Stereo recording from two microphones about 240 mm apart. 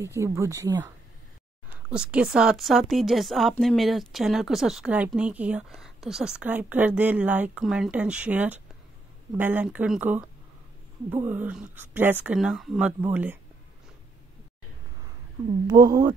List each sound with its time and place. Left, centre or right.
0.0 s speech: centre
1.9 s speech: centre
15.6 s speech: centre